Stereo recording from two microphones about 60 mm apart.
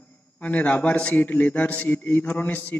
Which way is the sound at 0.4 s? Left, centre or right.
Left.